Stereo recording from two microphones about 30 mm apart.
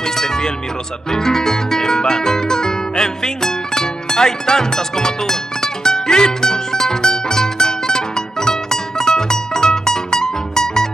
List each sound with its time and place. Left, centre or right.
0.0 s music: centre